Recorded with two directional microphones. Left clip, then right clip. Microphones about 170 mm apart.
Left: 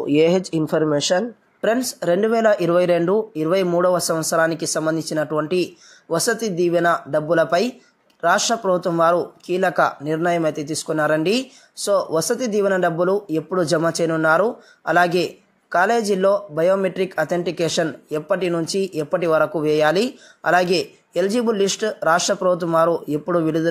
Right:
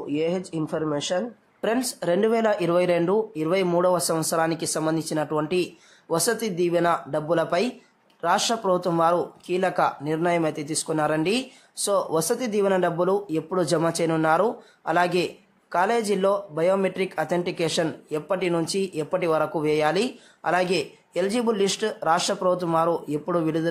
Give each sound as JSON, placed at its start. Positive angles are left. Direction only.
{"t": 0.0, "sound": "speech", "side_deg": 35}
{"t": 1.6, "sound": "speech", "side_deg": 15}